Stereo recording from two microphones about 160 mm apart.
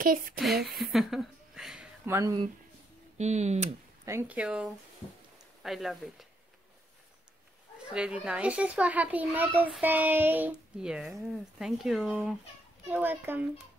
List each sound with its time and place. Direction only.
0.0 s speech: 60° right (ahead or behind)
0.4 s speech: centre (ahead or behind)
2.0 s a child's voice: 15° right (ahead or behind)
3.2 s speech: 45° right (ahead or behind)
4.0 s a child's voice: 15° right (ahead or behind)
5.0 s speech: 30° left (ahead or behind)
5.6 s speech: centre (ahead or behind)
7.9 s a child's voice: 5° right (ahead or behind)